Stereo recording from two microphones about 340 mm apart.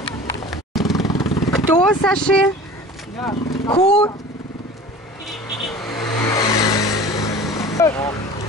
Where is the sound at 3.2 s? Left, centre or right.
Centre.